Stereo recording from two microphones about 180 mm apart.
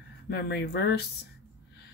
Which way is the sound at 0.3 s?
65° left (ahead or behind).